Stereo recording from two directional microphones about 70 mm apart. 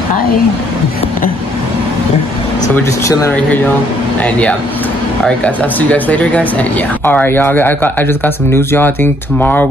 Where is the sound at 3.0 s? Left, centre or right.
Left.